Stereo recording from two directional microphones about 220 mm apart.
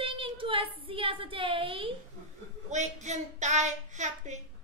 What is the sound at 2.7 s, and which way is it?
Child singing, 30° right (ahead or behind).